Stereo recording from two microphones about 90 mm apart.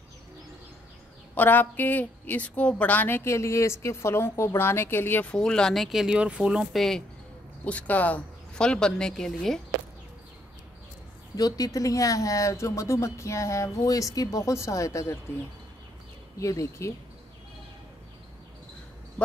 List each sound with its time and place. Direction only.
1.3 s a woman's voice: 20° left (ahead or behind); by 6.7 s 10° right (ahead or behind)
6.7 s speech: 5° left (ahead or behind)
7.6 s speech: 15° left (ahead or behind)
11.3 s speech: 40° left (ahead or behind)
16.3 s speech: 35° left (ahead or behind)